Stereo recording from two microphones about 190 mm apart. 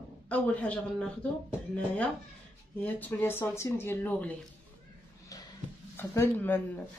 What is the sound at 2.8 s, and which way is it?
Speech, 10° left (ahead or behind).